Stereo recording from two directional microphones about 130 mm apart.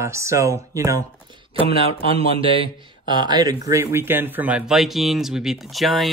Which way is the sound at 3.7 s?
20° right (ahead or behind).